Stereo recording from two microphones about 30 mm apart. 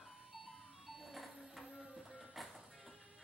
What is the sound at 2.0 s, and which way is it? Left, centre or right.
Train, centre.